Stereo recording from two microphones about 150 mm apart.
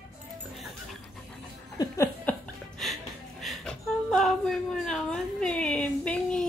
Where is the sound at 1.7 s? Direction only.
20° left (ahead or behind).